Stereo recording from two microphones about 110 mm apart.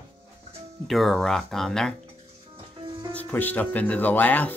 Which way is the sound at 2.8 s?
50° right (ahead or behind).